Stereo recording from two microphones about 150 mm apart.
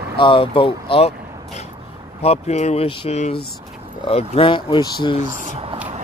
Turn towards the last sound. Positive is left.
turn(degrees=30)  # may be behind; listen again after turning